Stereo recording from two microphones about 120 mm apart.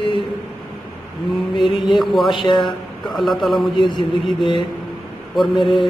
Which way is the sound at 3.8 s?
40° left (ahead or behind).